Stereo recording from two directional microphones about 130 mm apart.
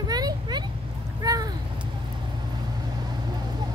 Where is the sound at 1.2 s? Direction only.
30° right (ahead or behind).